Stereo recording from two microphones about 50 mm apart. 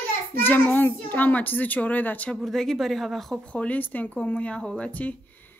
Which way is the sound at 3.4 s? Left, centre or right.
Left.